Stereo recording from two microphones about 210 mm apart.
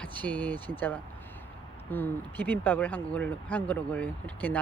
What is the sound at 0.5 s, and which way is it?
Speech, 20° right (ahead or behind).